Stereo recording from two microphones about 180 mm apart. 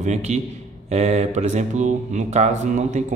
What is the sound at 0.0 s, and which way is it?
Speech, 40° right (ahead or behind).